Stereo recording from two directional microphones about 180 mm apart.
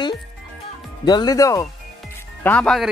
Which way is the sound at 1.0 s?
20° left (ahead or behind).